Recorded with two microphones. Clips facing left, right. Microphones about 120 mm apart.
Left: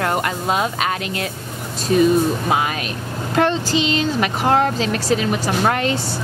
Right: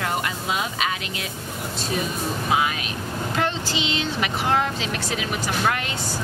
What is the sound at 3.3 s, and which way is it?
A woman's voice, 40° left (ahead or behind).